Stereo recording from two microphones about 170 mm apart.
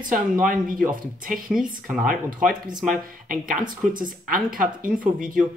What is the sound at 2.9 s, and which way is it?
Speech, 55° right (ahead or behind).